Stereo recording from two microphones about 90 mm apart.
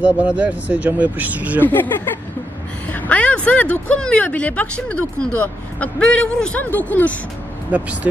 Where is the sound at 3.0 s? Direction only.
15° left (ahead or behind).